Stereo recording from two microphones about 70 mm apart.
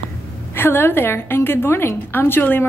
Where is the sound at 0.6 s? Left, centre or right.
Left.